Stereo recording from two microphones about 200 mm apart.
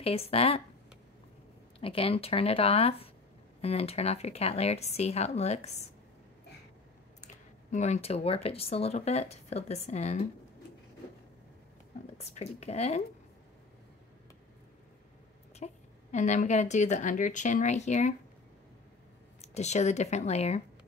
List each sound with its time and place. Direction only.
0.0 s speech: 30° left (ahead or behind)
1.8 s a woman's voice: 30° left (ahead or behind)
7.7 s a woman's voice: 35° left (ahead or behind)
12.2 s a woman's voice: 35° left (ahead or behind)
15.6 s a woman's voice: 35° left (ahead or behind)
19.4 s a woman's voice: 35° left (ahead or behind)